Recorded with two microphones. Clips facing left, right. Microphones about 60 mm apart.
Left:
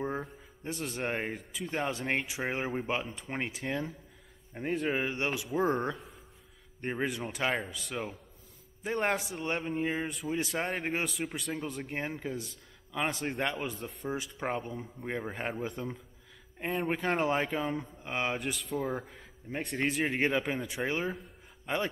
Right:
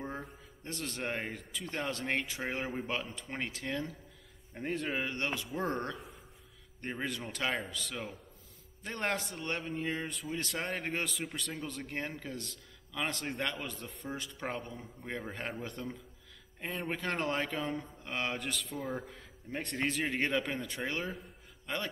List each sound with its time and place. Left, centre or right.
0.0 s a man's voice: centre
13.7 s a man's voice: centre